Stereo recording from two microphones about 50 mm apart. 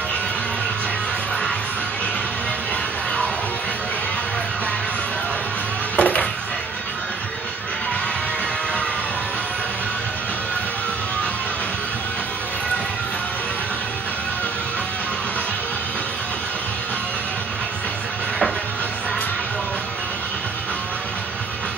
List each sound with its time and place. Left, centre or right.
5.9 s music: left